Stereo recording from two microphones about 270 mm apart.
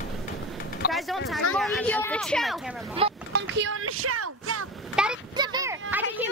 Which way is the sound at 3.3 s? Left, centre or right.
Right.